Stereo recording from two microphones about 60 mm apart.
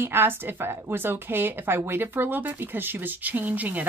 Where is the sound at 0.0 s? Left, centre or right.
Right.